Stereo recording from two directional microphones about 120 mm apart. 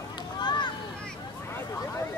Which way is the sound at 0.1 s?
40° left (ahead or behind).